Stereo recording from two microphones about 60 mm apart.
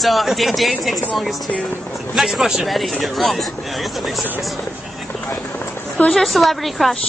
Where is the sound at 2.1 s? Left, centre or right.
Centre.